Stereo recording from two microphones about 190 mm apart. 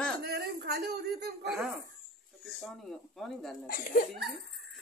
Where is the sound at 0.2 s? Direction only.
60° right (ahead or behind).